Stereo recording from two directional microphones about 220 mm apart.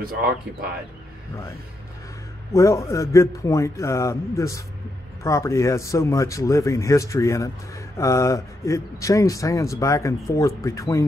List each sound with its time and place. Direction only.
0.0 s speech: 40° right (ahead or behind)
2.5 s speech: 15° left (ahead or behind)